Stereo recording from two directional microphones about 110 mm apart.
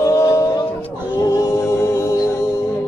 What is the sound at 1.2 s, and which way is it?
A capella, 30° left (ahead or behind).